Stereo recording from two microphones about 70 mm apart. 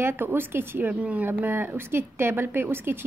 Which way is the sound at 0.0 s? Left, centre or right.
Right.